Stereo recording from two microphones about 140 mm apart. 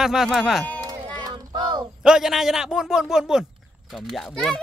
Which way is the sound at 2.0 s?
5° right (ahead or behind).